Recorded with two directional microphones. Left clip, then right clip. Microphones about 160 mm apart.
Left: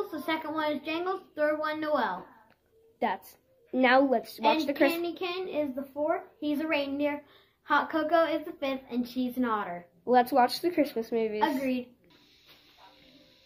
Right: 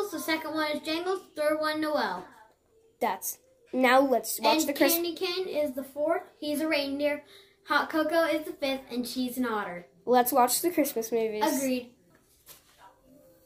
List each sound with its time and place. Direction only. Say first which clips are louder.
0.1 s a child's voice: right 1 dB; 10° left (ahead or behind)
3.7 s a child's voice: right 1 dB; 5° left (ahead or behind)